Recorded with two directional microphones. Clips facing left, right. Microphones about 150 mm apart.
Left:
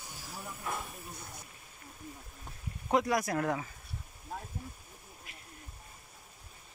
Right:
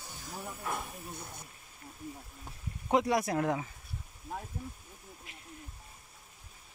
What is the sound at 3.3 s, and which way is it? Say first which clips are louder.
Speech: right 1 dB; 15° right (ahead or behind).